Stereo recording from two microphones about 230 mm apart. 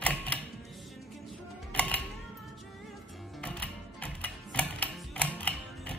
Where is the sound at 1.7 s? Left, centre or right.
Centre.